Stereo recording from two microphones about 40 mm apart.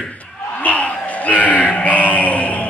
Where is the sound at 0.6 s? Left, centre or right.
Left.